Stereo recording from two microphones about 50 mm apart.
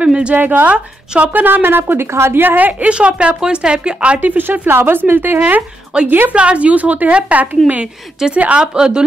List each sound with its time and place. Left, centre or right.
0.0 s a sound: right
0.4 s a woman's voice: right
0.7 s a woman's voice: right
1.4 s speech: right
2.9 s a woman's voice: right
4.2 s a woman's voice: right
6.3 s a woman's voice: right
8.2 s speech: centre